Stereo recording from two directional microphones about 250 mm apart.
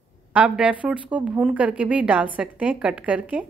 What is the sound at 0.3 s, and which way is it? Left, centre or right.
A woman's voice, centre.